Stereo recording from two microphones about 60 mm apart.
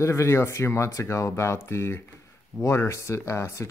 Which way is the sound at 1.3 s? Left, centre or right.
Left.